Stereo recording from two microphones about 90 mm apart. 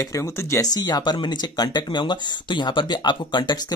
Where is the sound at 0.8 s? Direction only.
50° left (ahead or behind).